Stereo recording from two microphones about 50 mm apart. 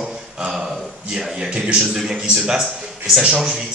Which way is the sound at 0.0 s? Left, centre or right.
Centre.